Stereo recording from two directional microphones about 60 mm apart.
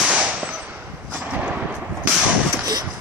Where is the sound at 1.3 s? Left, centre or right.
Right.